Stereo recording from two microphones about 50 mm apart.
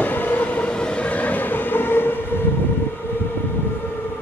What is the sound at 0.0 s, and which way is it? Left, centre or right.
Train, left.